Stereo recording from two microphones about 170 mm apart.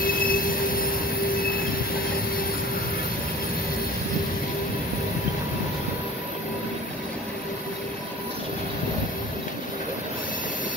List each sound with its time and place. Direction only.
0.0 s train wheels squealing: 60° left (ahead or behind)
1.3 s train: 60° left (ahead or behind)